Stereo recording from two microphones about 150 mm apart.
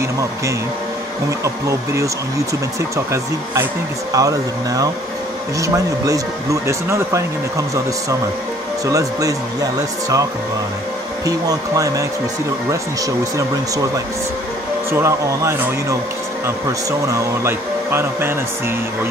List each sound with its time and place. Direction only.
1.4 s speech: 20° right (ahead or behind)
4.1 s speech: 25° right (ahead or behind)
11.2 s speech: 25° right (ahead or behind)
14.9 s speech: 15° right (ahead or behind)
17.1 s speech: 15° right (ahead or behind)